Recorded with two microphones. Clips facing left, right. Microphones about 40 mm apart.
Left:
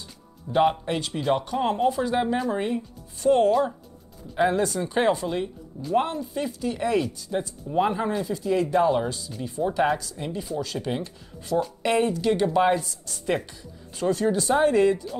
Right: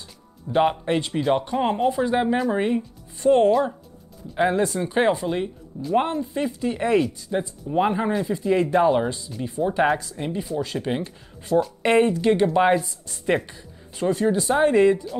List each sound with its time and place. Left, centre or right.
0.5 s speech: centre
4.4 s speech: centre
7.0 s speech: centre